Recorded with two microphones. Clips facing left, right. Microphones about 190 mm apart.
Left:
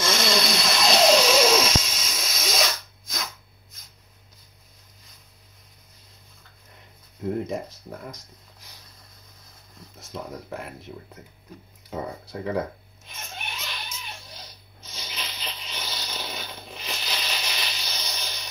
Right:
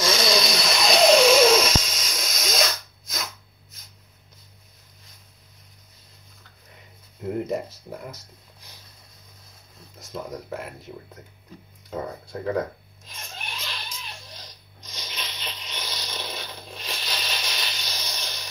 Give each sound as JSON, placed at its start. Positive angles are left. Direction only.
{"t": 0.0, "sound": "a sound", "side_deg": 0}
{"t": 7.2, "sound": "speech", "side_deg": -5}
{"t": 9.9, "sound": "speech", "side_deg": 0}
{"t": 11.9, "sound": "speech", "side_deg": 0}
{"t": 13.6, "sound": "cat", "side_deg": 0}
{"t": 14.9, "sound": "a sound", "side_deg": 5}